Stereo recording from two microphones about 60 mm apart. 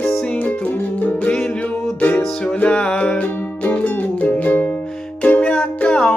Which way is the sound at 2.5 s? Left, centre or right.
Centre.